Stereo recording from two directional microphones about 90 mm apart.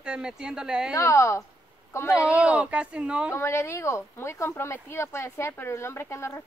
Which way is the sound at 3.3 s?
30° left (ahead or behind).